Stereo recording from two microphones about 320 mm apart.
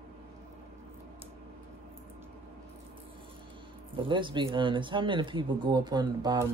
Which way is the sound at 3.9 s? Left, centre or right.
Centre.